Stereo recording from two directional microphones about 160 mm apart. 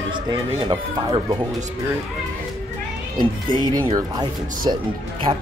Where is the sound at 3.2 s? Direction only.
30° right (ahead or behind).